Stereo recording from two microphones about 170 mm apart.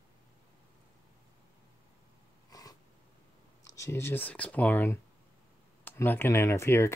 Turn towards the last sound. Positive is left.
turn(degrees=15)  # may be behind; listen again after turning